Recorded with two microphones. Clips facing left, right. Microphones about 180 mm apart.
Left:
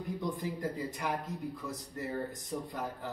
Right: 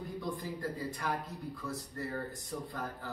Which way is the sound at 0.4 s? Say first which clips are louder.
Left 2 dB; 15° left (ahead or behind).